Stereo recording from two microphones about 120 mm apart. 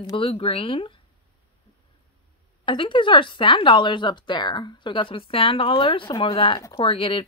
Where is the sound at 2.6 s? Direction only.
45° left (ahead or behind).